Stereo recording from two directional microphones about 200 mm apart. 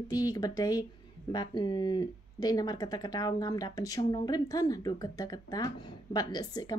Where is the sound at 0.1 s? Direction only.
20° left (ahead or behind).